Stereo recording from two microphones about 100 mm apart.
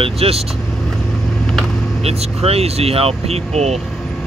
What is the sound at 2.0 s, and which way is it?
Speech, 90° right.